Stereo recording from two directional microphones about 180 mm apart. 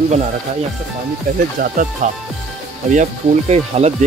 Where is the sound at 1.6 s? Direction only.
55° right (ahead or behind).